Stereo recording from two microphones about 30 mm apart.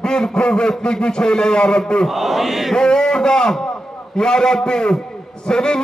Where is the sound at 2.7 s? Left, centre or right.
Left.